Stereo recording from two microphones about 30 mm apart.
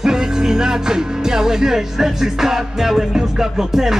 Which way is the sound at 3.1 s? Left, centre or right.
Centre.